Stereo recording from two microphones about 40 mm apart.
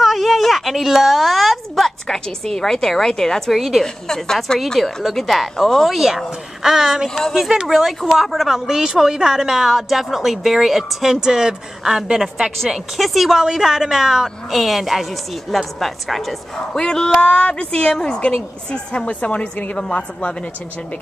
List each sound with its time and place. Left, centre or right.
0.0 s a sound: centre
2.0 s speech: centre
3.5 s a woman's voice: centre
3.8 s a woman's voice: centre
5.9 s a woman's voice: centre
8.6 s a woman's voice: centre
13.4 s a woman's voice: centre
16.5 s a woman's voice: centre
17.2 s a woman's voice: left